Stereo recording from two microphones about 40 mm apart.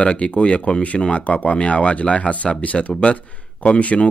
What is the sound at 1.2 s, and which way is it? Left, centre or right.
Speech, left.